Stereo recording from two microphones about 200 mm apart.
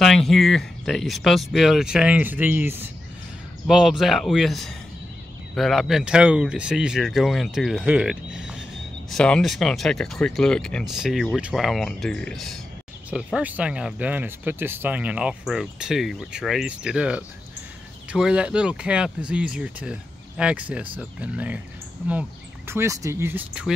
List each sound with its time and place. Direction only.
0.0 s speech: centre (ahead or behind)
22.7 s speech: 15° right (ahead or behind)